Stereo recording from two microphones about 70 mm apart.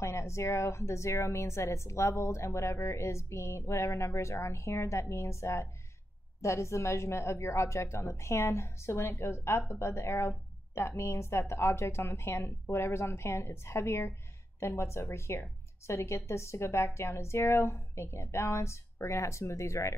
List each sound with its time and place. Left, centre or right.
0.0 s a woman's voice: left